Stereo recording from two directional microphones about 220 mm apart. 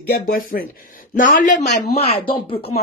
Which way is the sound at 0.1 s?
40° left (ahead or behind).